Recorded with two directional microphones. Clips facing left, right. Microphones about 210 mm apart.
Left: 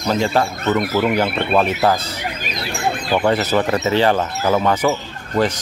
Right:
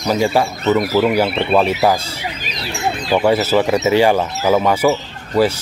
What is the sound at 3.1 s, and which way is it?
Speech, 5° right (ahead or behind).